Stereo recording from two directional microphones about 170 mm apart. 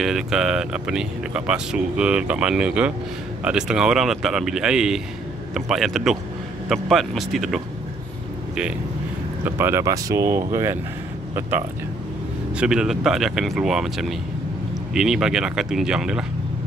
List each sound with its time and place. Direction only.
0.0 s speech: centre (ahead or behind)
9.4 s speech: 15° right (ahead or behind)
12.5 s speech: 5° right (ahead or behind)